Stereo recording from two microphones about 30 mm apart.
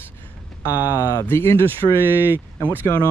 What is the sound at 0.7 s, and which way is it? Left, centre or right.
Speech, right.